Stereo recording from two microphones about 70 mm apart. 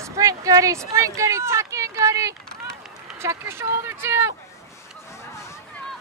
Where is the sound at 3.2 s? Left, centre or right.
Right.